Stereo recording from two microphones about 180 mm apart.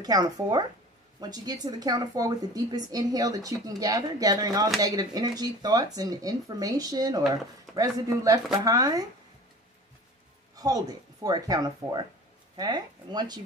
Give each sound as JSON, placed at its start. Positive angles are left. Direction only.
{"t": 0.0, "sound": "a woman's voice", "side_deg": -20}
{"t": 10.5, "sound": "a woman's voice", "side_deg": -20}